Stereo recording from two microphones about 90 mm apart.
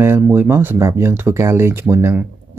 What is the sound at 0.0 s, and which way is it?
Speech, 25° right (ahead or behind).